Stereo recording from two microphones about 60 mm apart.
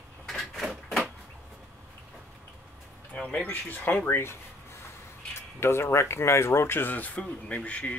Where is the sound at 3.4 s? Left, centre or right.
Left.